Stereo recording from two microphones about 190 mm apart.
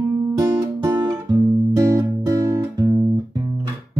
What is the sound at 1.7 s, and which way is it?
Music, 15° right (ahead or behind).